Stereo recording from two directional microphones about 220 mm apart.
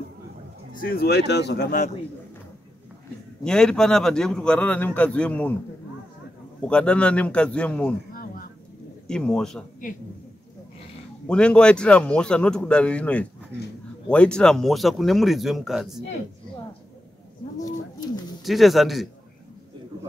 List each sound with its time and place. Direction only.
0.7 s speech: 45° left (ahead or behind)
3.4 s a man's voice: 5° left (ahead or behind)
6.7 s a man's voice: 5° left (ahead or behind)
9.0 s a man's voice: 5° left (ahead or behind)
11.2 s a man's voice: 5° left (ahead or behind)
17.6 s speech: 20° left (ahead or behind)
18.4 s a man's voice: centre (ahead or behind)